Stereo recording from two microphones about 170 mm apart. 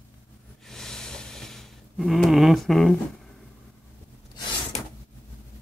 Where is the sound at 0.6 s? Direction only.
5° left (ahead or behind).